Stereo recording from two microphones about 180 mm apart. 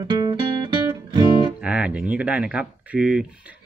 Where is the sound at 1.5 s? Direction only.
5° right (ahead or behind).